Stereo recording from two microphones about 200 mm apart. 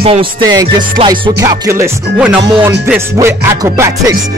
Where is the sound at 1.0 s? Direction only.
20° right (ahead or behind).